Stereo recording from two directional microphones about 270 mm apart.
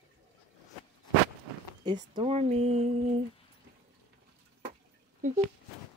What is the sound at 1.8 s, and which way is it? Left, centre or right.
Speech, centre.